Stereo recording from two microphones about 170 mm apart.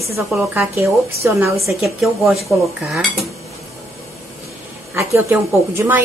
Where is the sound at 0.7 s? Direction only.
15° right (ahead or behind).